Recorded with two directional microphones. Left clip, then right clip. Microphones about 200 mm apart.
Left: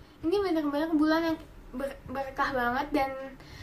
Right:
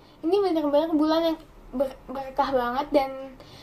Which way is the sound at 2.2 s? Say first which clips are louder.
Right 4 dB; 10° left (ahead or behind).